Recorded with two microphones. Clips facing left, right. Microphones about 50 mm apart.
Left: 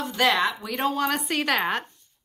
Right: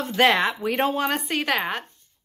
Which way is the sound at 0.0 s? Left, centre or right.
Right.